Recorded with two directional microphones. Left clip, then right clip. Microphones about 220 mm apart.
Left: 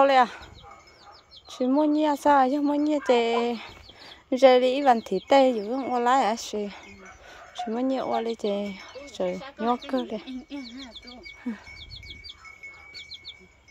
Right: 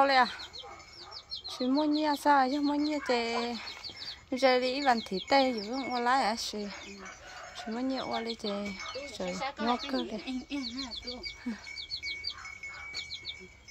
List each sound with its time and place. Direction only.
0.0 s speech: 25° left (ahead or behind)
1.5 s speech: 25° left (ahead or behind)